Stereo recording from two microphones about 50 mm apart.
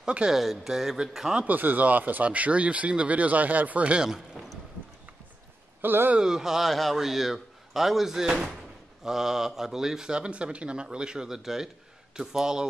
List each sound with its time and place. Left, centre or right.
0.3 s speech: centre
1.5 s speech: right
5.8 s speech: right
6.1 s speech: centre